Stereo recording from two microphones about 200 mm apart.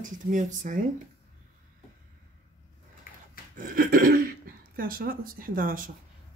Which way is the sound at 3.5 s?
45° right (ahead or behind).